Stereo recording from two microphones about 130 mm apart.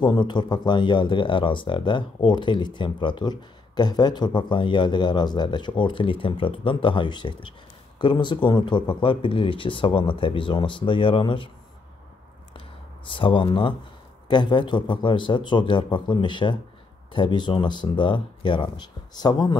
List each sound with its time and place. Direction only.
0.0 s speech: 35° left (ahead or behind)
12.5 s a sound: 40° left (ahead or behind)
14.2 s speech: 35° left (ahead or behind)